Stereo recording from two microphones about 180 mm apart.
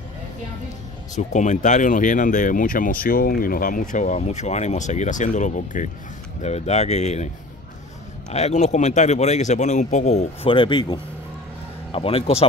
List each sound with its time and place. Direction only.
1.1 s speech: 40° left (ahead or behind)
8.3 s speech: 35° left (ahead or behind)